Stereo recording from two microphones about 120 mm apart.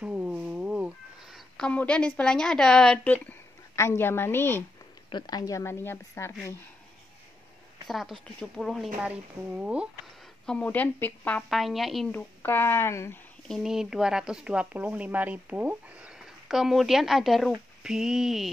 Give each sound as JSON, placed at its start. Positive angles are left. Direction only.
{"t": 0.0, "sound": "a sound", "side_deg": -10}
{"t": 1.7, "sound": "speech", "side_deg": 10}
{"t": 3.7, "sound": "a woman's voice", "side_deg": 25}
{"t": 5.1, "sound": "a woman's voice", "side_deg": 35}
{"t": 7.9, "sound": "speech", "side_deg": 0}
{"t": 9.0, "sound": "speech", "side_deg": -10}
{"t": 10.4, "sound": "speech", "side_deg": 10}
{"t": 11.5, "sound": "speech", "side_deg": 0}
{"t": 12.1, "sound": "a woman's voice", "side_deg": 20}
{"t": 13.5, "sound": "speech", "side_deg": -5}